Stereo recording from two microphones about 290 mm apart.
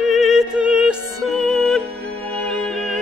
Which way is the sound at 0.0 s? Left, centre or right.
Centre.